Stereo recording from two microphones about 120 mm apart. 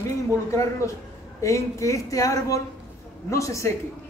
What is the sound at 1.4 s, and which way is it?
A woman's voice, 25° left (ahead or behind).